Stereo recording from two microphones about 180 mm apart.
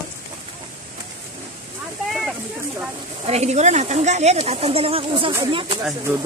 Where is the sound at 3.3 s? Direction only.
35° right (ahead or behind).